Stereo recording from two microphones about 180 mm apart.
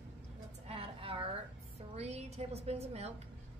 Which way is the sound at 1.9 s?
35° right (ahead or behind).